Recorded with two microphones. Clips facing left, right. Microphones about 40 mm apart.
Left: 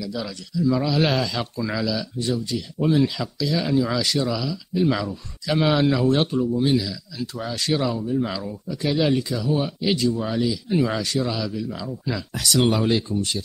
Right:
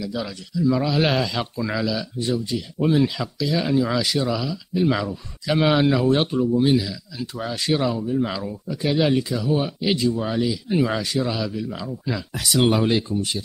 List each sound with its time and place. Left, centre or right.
0.0 s speech: centre
9.8 s speech: centre
10.1 s speech: centre